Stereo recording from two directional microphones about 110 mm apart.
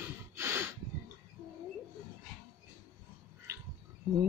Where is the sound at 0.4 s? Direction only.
25° right (ahead or behind).